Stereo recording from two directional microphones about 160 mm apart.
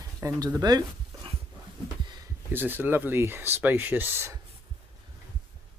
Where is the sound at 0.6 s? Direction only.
25° right (ahead or behind).